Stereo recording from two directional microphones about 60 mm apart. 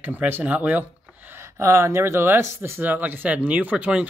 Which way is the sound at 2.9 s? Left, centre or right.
Right.